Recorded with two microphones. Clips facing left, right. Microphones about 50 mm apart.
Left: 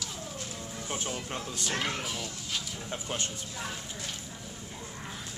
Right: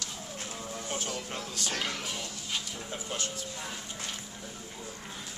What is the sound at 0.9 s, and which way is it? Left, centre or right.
Speech, centre.